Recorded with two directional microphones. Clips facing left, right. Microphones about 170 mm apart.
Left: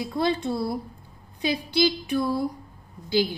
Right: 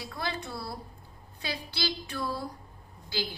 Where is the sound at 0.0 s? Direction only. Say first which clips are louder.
Left 11 dB; 20° left (ahead or behind).